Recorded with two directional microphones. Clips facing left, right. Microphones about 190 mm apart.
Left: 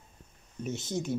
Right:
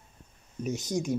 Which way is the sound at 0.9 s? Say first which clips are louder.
Right 3 dB; 15° right (ahead or behind).